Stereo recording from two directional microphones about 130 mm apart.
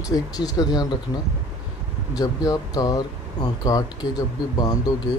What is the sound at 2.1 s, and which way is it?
Speech, 30° left (ahead or behind).